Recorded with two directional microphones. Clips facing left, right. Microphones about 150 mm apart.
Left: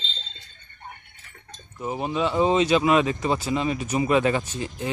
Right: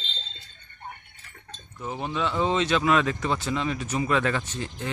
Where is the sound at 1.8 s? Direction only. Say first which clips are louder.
Left 4 dB; 20° left (ahead or behind).